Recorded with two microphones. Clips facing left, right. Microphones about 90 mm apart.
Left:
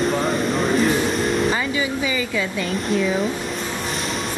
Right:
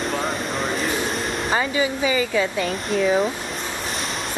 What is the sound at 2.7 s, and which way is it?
Speech, centre (ahead or behind).